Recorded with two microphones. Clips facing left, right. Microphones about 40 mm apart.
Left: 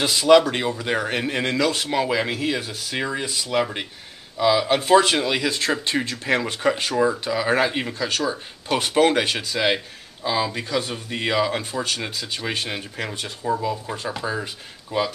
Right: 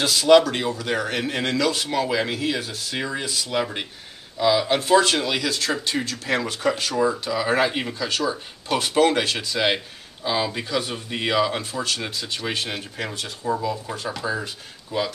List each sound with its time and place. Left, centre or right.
0.0 s a man's voice: centre
7.5 s speech: centre
8.3 s speech: centre
10.2 s speech: centre
13.1 s a man's voice: centre